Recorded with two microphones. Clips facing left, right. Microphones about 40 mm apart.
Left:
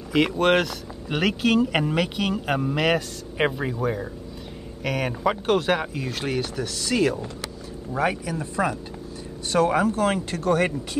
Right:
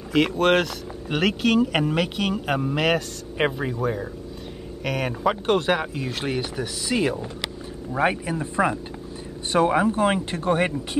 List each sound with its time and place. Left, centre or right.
0.1 s speech: centre; by 10.7 s right